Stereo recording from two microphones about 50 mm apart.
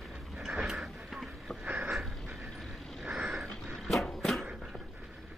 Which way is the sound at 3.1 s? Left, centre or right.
Centre.